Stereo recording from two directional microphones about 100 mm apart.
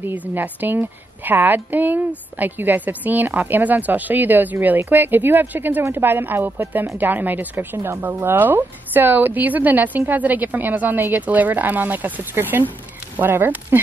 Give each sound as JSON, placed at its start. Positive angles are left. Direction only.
{"t": 0.0, "sound": "a woman's voice", "side_deg": -15}